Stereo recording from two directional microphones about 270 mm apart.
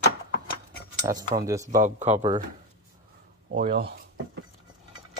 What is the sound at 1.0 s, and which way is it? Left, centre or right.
A man's voice, centre.